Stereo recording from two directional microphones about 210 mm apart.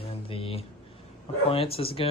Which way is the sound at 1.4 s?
25° left (ahead or behind).